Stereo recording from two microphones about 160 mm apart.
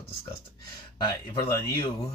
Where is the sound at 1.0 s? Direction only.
25° left (ahead or behind).